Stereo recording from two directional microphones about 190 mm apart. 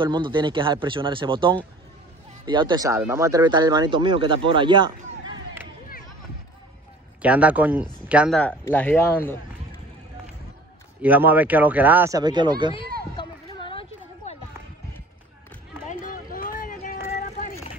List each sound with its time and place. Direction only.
0.0 s speech: 25° right (ahead or behind)
7.2 s speech: 5° right (ahead or behind)
8.4 s speech: 10° left (ahead or behind)
11.0 s speech: 10° right (ahead or behind)
13.1 s a sound: 25° left (ahead or behind)
15.9 s vehicle: 45° left (ahead or behind)